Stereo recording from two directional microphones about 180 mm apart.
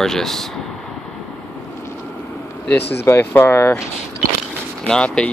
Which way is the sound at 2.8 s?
70° left (ahead or behind).